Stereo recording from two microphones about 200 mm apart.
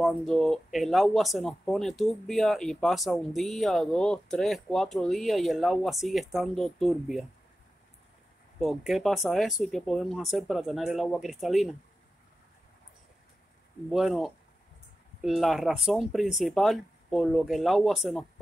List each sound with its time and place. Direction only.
0.0 s speech: centre (ahead or behind)
8.5 s speech: centre (ahead or behind)
13.8 s speech: centre (ahead or behind)